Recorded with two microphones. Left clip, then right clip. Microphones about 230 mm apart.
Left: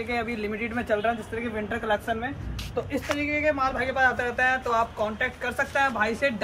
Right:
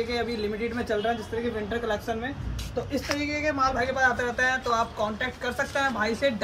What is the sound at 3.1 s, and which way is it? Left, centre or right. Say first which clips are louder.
Speech: left 3 dB; centre.